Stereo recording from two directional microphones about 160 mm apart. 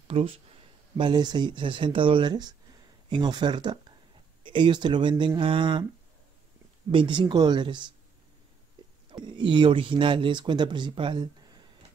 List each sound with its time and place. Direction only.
0.1 s speech: 35° right (ahead or behind)
6.9 s speech: 30° right (ahead or behind)
9.1 s speech: 30° right (ahead or behind)